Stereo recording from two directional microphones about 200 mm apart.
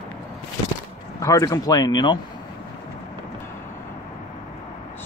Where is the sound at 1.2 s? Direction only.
15° left (ahead or behind).